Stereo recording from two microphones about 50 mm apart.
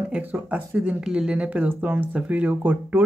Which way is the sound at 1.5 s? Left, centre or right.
Right.